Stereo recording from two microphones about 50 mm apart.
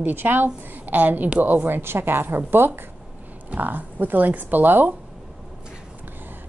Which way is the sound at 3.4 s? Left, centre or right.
Right.